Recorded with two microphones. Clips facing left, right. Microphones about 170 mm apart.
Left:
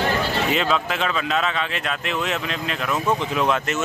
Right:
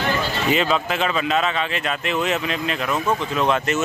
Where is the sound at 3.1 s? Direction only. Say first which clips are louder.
Left 1 dB; 15° left (ahead or behind).